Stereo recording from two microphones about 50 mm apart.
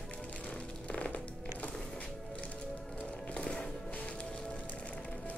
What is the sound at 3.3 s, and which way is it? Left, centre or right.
Music, centre.